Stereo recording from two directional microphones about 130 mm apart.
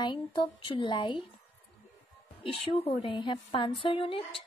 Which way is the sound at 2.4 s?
45° left (ahead or behind).